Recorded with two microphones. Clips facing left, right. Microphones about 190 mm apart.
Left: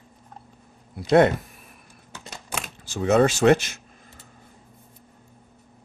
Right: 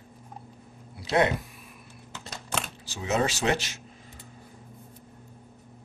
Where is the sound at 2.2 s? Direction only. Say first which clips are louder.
Right 1 dB; 10° left (ahead or behind).